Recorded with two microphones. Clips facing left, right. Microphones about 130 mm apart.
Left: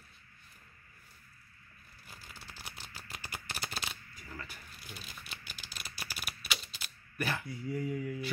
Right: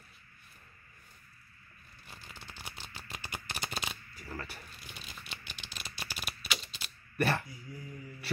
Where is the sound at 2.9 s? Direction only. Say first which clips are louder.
Right 2 dB; centre (ahead or behind).